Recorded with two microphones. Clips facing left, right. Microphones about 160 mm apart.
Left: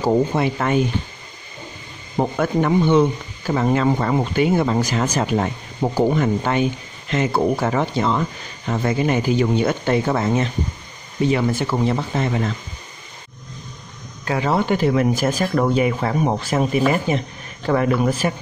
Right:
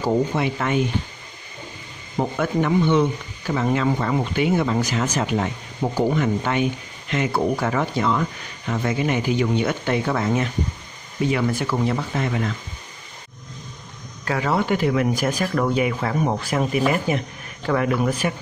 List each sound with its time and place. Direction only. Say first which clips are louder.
0.0 s speech: left 3 dB; 35° left (ahead or behind)
2.1 s speech: left 2 dB; 40° left (ahead or behind)
14.2 s speech: left 2 dB; 25° left (ahead or behind)